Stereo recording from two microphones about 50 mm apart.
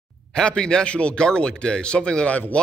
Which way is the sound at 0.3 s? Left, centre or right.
Centre.